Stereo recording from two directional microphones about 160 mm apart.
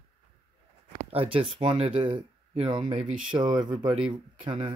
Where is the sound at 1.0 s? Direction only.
35° right (ahead or behind).